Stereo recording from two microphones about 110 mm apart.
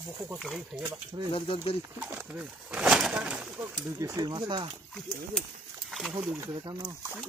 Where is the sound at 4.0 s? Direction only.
30° right (ahead or behind); by 4.7 s 45° right (ahead or behind).